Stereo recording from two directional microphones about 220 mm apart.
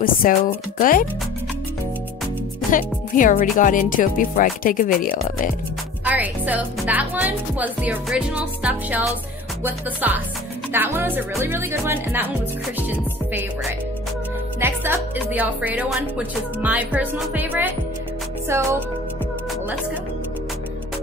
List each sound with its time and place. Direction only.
0.0 s speech: 40° left (ahead or behind)
2.7 s speech: 35° left (ahead or behind)
6.0 s speech: 5° right (ahead or behind)
14.6 s speech: 10° right (ahead or behind)